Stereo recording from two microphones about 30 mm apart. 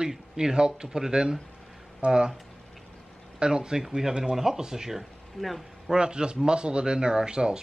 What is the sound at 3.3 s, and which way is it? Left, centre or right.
Speech, right.